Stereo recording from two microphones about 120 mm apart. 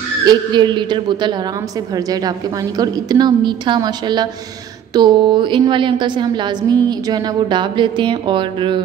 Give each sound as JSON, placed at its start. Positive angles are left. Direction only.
{"t": 0.2, "sound": "a woman's voice", "side_deg": -35}